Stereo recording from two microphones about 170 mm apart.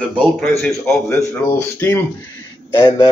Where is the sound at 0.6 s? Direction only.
15° left (ahead or behind).